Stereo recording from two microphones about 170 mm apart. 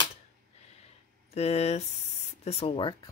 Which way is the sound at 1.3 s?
40° left (ahead or behind).